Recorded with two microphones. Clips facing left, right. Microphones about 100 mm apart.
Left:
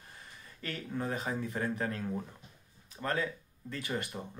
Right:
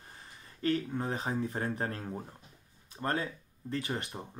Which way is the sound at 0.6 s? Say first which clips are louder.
Right 6 dB; 30° right (ahead or behind).